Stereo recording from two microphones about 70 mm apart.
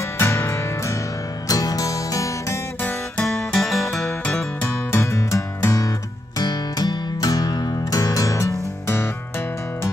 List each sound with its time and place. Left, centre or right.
0.0 s music: left
1.5 s music: left
3.3 s music: centre
4.9 s music: left
6.4 s music: left
8.8 s music: left